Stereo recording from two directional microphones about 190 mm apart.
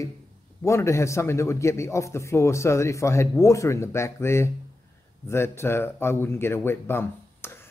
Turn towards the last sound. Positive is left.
turn(degrees=10)  # may be behind; listen again after turning